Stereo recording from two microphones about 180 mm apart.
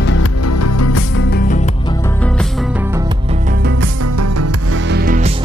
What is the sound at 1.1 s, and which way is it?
Music, 80° left.